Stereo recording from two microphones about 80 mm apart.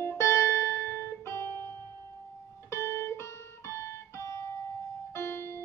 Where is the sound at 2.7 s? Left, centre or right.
Left.